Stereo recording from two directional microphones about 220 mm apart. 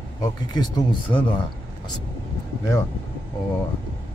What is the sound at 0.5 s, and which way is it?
Speech, 20° left (ahead or behind).